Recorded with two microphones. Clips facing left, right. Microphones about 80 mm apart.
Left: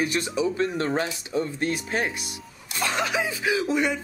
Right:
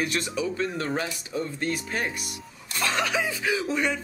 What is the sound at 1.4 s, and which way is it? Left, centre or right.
Speech, left.